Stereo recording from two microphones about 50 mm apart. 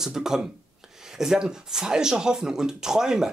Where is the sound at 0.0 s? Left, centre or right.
Centre.